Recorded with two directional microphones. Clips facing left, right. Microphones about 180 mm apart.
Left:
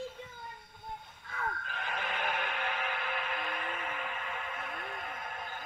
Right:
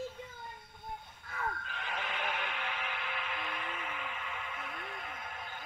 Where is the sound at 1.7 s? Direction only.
50° left (ahead or behind).